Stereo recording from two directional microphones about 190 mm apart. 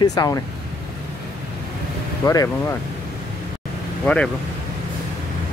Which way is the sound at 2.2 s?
15° left (ahead or behind).